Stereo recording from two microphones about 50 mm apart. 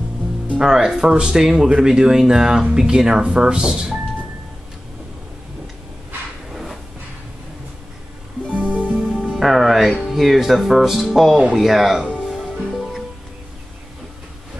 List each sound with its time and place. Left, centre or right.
0.6 s speech: centre
6.5 s a sound: centre
8.5 s music: left
8.9 s music: right
9.3 s music: centre
10.1 s speech: centre
12.3 s music: centre